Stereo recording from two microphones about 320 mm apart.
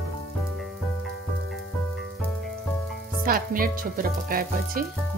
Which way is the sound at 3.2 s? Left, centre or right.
Right.